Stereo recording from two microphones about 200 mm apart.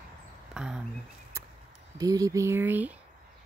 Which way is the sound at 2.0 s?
15° right (ahead or behind).